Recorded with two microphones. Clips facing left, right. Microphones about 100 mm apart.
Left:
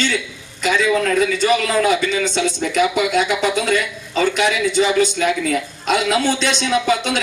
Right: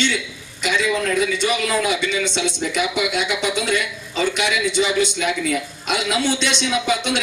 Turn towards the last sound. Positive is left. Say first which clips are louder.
# left 3 dB
turn(degrees=40)  # may be behind; listen again after turning